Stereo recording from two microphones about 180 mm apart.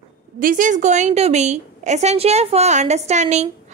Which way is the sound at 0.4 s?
50° right (ahead or behind).